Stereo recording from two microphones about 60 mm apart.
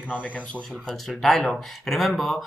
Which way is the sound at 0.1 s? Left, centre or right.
Left.